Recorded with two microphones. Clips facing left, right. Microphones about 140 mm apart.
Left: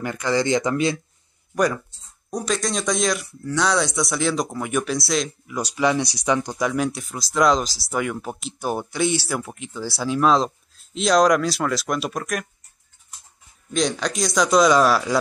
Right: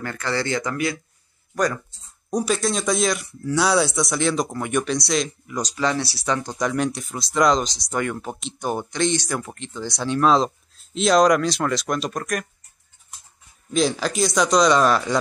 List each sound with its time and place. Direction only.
0.0 s speech: 15° left (ahead or behind)
1.5 s speech: 10° left (ahead or behind)
2.4 s speech: 5° right (ahead or behind)
5.6 s speech: 10° left (ahead or behind)
13.7 s speech: 5° right (ahead or behind)